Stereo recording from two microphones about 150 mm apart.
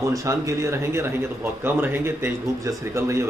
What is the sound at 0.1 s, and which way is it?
Speech, 20° right (ahead or behind).